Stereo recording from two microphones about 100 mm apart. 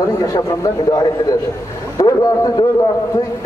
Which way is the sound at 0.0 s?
40° left (ahead or behind).